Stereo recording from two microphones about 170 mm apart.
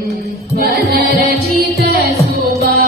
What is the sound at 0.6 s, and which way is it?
Music, 65° right (ahead or behind).